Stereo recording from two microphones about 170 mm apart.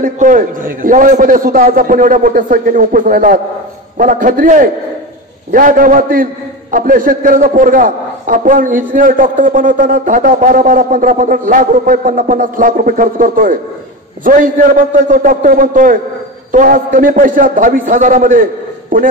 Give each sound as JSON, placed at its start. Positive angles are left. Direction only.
{"t": 0.0, "sound": "a man's voice", "side_deg": -50}